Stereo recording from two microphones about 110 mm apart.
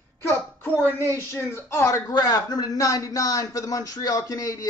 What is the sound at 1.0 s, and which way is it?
Speech, 20° left (ahead or behind).